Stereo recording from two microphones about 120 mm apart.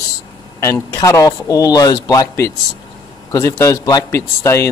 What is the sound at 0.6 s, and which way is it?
A man's voice, 25° left (ahead or behind).